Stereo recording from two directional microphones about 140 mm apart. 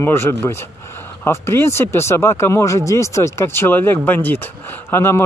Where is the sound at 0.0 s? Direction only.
15° left (ahead or behind).